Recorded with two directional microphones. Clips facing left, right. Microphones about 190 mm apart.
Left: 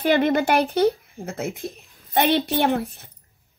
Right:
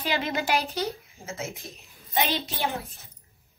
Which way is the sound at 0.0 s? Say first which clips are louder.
Left 10 dB; 55° left (ahead or behind).